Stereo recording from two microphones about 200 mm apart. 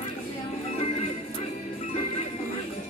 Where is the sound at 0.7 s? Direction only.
30° left (ahead or behind).